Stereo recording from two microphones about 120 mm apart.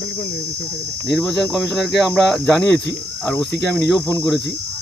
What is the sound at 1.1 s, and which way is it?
Speech, centre (ahead or behind).